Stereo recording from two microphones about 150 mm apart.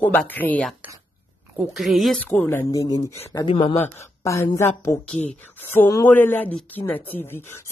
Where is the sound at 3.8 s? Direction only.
15° left (ahead or behind).